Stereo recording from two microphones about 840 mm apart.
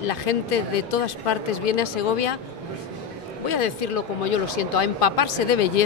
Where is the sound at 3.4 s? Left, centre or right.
Left.